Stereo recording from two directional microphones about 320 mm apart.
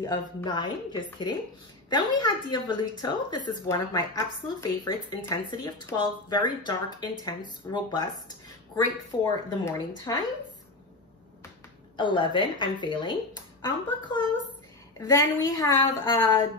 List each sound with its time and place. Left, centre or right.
0.0 s speech: centre
12.0 s speech: centre